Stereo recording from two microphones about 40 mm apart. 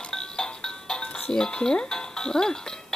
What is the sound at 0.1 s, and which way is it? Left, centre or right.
Music, centre.